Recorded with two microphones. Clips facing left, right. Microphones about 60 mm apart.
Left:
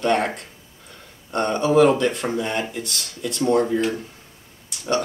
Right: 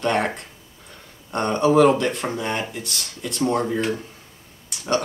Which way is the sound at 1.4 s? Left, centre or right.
Centre.